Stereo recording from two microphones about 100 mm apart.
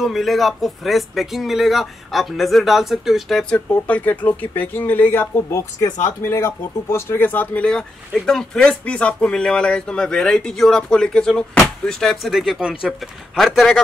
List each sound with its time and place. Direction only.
0.0 s speech: centre (ahead or behind)